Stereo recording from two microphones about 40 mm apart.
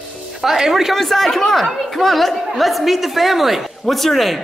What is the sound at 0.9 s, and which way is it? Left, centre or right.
A woman's voice, centre.